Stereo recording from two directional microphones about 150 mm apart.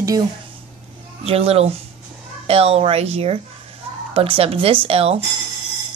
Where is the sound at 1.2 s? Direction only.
40° right (ahead or behind).